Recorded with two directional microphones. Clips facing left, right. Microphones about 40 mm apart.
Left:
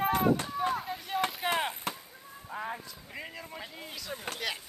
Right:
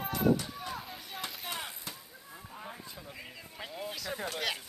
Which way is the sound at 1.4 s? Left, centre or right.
Left.